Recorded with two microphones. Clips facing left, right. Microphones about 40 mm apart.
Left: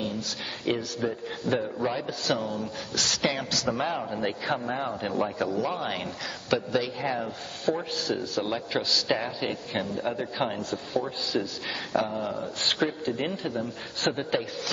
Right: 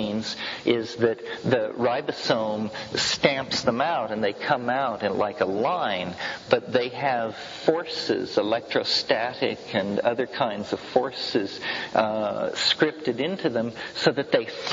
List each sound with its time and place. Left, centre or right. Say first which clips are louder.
0.0 s speech: right 3 dB; right
13.4 s speech: right 6 dB; right